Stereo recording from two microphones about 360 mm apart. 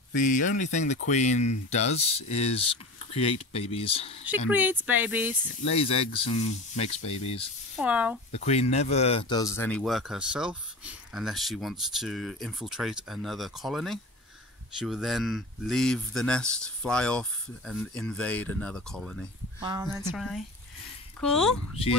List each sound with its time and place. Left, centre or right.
0.1 s speech: left
4.5 s speech: centre
5.7 s speech: centre
7.7 s speech: centre
8.3 s speech: centre
19.6 s speech: centre